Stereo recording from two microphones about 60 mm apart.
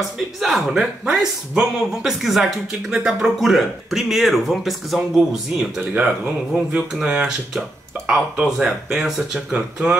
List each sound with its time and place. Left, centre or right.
0.4 s speech: centre
5.8 s speech: right; by 9.8 s centre